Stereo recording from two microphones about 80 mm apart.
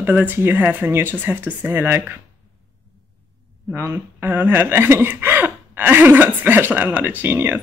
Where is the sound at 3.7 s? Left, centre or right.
Right.